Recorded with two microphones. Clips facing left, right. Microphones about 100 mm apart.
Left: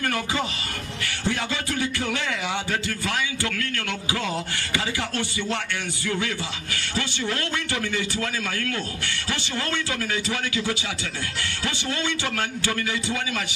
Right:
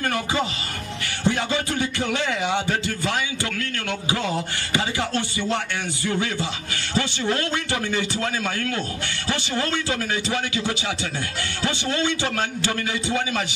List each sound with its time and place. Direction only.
0.0 s a man's voice: 20° right (ahead or behind)